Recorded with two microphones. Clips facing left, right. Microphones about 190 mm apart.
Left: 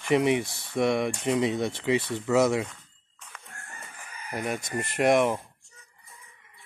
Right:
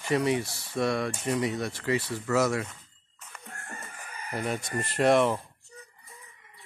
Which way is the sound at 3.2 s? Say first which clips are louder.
Right 2 dB; 5° right (ahead or behind).